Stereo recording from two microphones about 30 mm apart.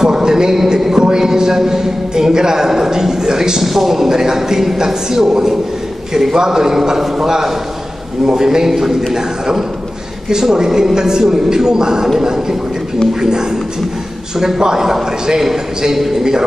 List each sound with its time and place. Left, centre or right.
0.0 s a man's voice: centre
3.6 s a man's voice: centre